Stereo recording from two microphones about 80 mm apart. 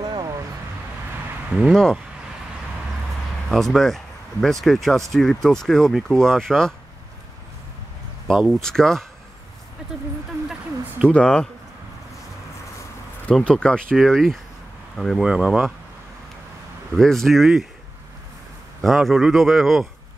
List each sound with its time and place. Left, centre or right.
0.0 s a sound: right
1.7 s speech: centre
3.4 s speech: centre
8.3 s speech: centre
11.1 s speech: centre
13.5 s speech: centre
15.2 s speech: centre
16.9 s speech: centre
18.8 s speech: centre